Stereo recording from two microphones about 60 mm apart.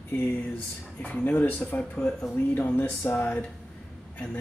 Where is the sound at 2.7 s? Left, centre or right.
Left.